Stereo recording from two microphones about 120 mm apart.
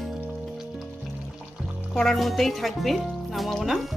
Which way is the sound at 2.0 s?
Centre (ahead or behind).